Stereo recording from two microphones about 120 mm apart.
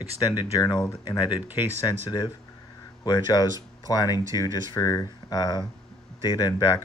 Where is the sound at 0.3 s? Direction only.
35° left (ahead or behind).